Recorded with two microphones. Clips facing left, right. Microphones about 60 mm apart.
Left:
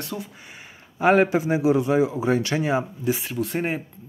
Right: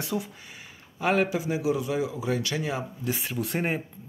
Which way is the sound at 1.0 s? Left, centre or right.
Left.